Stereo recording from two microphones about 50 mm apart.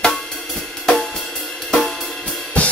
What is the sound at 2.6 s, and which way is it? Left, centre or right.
Cymbal, left.